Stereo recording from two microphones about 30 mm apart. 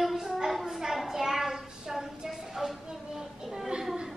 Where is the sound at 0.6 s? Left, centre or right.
Centre.